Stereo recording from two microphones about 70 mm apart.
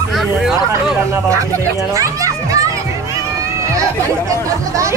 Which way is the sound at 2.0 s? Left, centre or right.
Right.